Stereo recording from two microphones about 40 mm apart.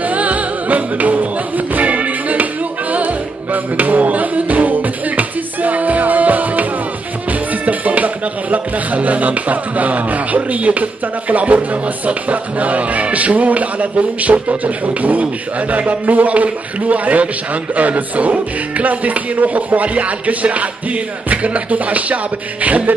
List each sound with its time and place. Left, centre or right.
0.1 s music: right
3.5 s music: right
7.6 s speech: right